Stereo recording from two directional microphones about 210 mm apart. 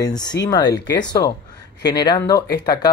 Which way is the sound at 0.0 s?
20° left (ahead or behind).